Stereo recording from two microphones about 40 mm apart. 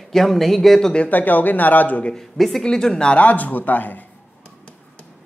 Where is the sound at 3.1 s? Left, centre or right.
Left.